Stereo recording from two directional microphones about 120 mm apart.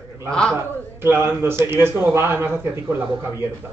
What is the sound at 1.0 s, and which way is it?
Speech, 20° right (ahead or behind).